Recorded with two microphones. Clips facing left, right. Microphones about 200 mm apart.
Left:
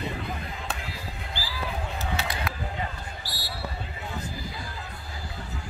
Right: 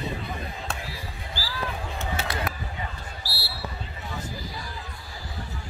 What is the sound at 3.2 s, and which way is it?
Basketball bounce, 20° left (ahead or behind).